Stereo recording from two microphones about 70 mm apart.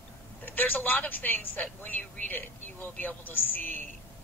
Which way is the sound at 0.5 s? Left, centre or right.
Left.